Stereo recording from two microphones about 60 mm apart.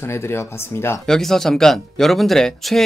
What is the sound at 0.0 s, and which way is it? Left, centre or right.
Speech, left.